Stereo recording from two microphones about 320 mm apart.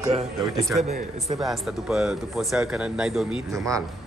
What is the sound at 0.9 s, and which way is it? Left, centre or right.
Speech, right.